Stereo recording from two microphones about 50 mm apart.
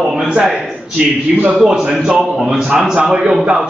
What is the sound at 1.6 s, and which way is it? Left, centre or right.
A man's voice, centre.